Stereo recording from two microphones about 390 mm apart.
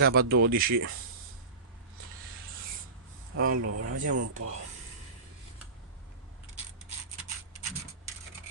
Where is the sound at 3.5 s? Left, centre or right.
Right.